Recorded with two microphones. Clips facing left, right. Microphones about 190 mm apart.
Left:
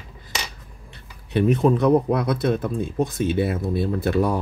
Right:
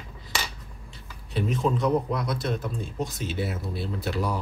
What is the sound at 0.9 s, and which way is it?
Speech, 60° left (ahead or behind).